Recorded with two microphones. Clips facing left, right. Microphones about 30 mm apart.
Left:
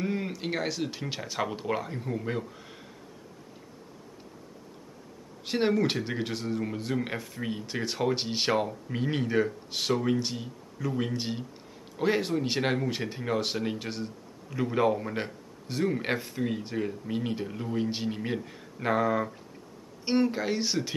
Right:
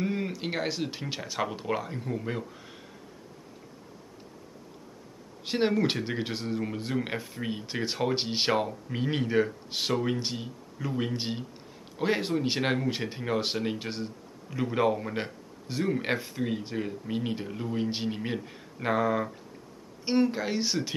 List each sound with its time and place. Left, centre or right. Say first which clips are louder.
0.0 s speech: right 1 dB; centre
5.4 s speech: even; centre